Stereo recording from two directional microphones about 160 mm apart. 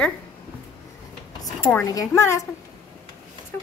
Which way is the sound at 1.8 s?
20° left (ahead or behind).